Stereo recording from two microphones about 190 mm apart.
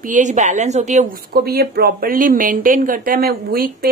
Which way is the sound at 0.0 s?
40° right (ahead or behind).